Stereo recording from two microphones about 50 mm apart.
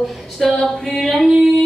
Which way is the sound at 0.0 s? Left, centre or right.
Centre.